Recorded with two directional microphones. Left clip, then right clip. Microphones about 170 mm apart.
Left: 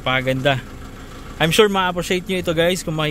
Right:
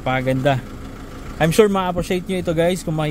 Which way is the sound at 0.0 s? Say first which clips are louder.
Left 1 dB; 15° right (ahead or behind).